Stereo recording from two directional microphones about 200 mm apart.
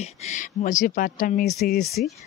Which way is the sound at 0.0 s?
40° left (ahead or behind).